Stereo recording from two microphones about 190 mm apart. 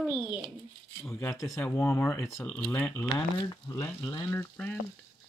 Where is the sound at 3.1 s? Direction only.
20° left (ahead or behind).